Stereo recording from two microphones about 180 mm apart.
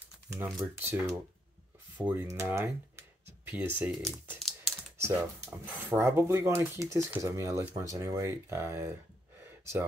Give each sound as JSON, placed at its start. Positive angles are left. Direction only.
{"t": 0.7, "sound": "speech", "side_deg": -15}
{"t": 4.4, "sound": "computer keyboard", "side_deg": 0}
{"t": 5.0, "sound": "speech", "side_deg": -10}